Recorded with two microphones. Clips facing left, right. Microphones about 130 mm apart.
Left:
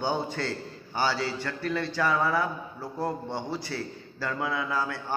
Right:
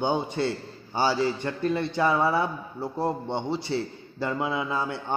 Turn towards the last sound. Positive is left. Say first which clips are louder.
# right 2 dB
turn(degrees=-25)  # may be behind; listen again after turning